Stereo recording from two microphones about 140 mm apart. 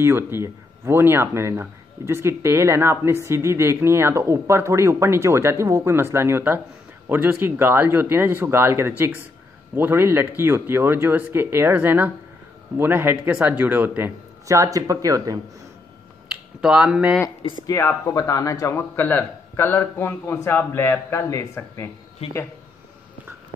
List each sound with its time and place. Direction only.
0.0 s speech: 15° right (ahead or behind)
16.3 s speech: 5° right (ahead or behind)
17.4 s speech: 35° left (ahead or behind)
17.6 s a man's voice: 20° left (ahead or behind)